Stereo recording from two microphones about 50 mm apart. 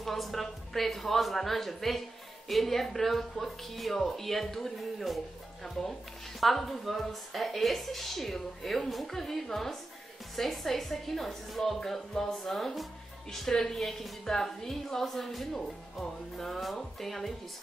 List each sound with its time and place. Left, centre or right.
0.0 s speech: centre
6.4 s a woman's voice: centre